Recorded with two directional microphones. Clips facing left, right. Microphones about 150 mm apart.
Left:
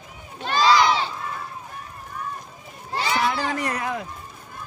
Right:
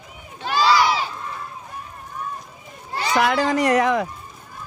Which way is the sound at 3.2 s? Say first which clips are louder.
Right 9 dB; 85° right.